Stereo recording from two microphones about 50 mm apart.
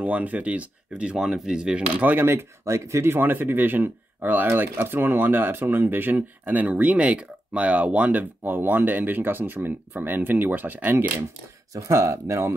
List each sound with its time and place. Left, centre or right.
0.0 s speech: right
1.0 s speech: centre
2.0 s speech: right
2.6 s speech: right
3.2 s speech: right
11.9 s speech: right